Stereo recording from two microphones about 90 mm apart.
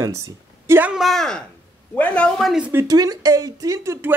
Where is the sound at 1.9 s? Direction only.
15° left (ahead or behind).